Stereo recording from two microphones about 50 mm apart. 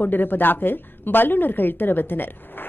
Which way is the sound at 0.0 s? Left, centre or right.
Left.